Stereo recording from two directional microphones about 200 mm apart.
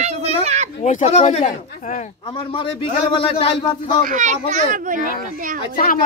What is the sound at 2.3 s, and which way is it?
Speech, 25° left (ahead or behind).